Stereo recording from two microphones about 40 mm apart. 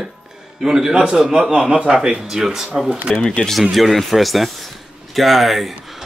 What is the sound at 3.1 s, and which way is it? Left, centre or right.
Speech, left.